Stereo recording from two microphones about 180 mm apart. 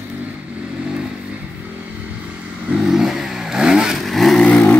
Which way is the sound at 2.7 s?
5° right (ahead or behind).